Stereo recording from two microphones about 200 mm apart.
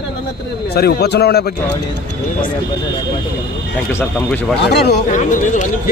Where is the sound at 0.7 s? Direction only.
50° left (ahead or behind).